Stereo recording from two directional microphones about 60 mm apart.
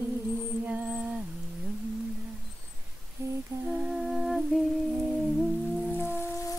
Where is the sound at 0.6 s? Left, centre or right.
Right.